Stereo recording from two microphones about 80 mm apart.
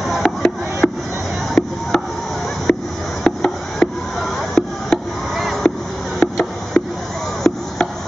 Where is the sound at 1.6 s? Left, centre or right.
Left.